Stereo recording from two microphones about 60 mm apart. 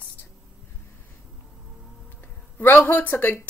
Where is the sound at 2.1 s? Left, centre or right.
Left.